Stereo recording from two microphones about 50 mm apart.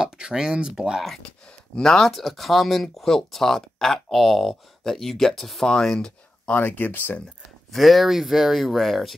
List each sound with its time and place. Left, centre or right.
0.0 s speech: centre
1.8 s speech: centre
6.5 s speech: left
7.7 s speech: centre